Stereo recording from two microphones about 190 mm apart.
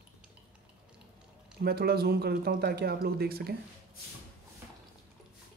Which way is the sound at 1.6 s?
55° right (ahead or behind).